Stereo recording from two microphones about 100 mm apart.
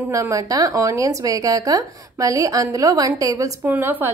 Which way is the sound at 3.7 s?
20° right (ahead or behind).